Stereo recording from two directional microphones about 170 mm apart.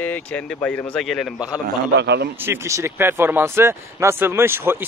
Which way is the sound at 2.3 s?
15° right (ahead or behind).